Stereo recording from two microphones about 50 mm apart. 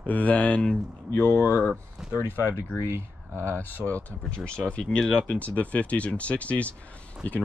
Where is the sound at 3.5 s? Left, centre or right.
Left.